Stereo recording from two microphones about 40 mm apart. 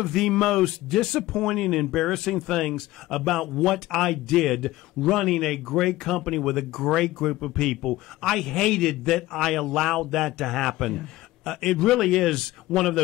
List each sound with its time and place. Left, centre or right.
0.0 s speech: centre